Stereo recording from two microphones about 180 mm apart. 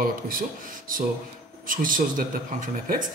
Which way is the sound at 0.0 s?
50° right (ahead or behind).